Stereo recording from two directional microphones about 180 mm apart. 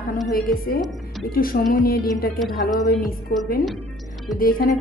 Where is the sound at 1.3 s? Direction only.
55° left (ahead or behind).